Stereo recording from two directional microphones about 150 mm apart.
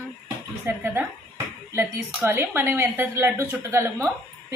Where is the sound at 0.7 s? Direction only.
15° right (ahead or behind).